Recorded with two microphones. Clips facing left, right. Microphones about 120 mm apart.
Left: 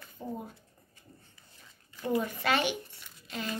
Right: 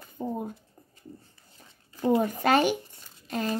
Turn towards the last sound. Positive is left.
turn(degrees=-45)  # may be behind; listen again after turning